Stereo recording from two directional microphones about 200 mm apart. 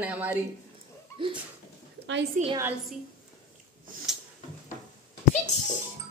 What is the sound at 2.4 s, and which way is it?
Speech, 40° right (ahead or behind).